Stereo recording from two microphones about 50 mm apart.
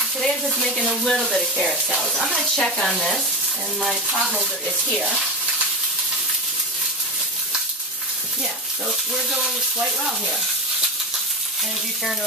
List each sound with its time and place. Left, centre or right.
0.2 s speech: centre
1.9 s speech: centre
2.3 s speech: centre
4.2 s speech: centre
9.3 s speech: centre